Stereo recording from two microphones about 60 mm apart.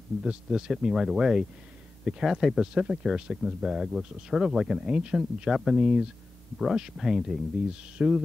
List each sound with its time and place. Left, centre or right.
0.2 s speech: centre